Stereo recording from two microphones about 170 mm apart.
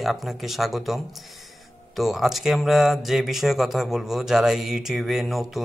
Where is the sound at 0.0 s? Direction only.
Centre (ahead or behind).